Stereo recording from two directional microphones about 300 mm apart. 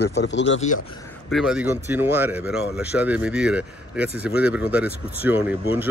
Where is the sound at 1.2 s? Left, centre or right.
Centre.